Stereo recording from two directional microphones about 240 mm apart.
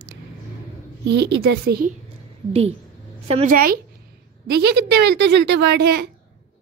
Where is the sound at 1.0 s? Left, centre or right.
Right.